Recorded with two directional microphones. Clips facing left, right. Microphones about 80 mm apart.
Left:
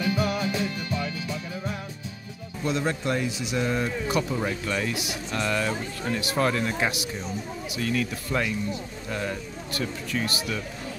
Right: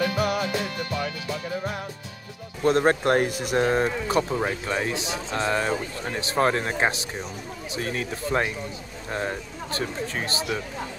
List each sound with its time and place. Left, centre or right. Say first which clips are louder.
0.0 s music: right 2 dB; right
2.6 s speech: right 7 dB; right